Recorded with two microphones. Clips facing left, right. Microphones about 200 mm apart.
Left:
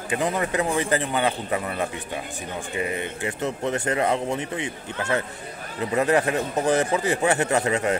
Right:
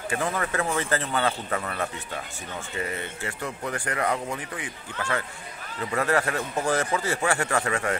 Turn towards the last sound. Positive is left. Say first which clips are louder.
# left 4 dB
turn(degrees=20)  # may be behind; listen again after turning